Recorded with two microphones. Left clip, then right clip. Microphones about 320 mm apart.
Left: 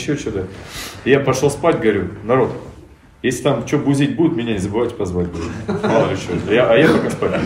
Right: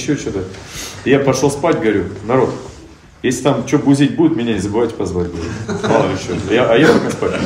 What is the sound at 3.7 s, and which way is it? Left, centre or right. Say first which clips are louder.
A man's voice: right 4 dB; centre.